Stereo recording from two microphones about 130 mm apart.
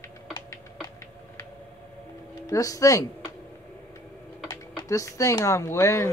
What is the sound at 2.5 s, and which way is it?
Speech, 25° left (ahead or behind).